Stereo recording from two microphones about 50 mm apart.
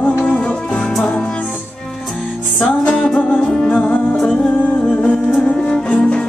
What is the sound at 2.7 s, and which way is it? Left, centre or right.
Music, centre.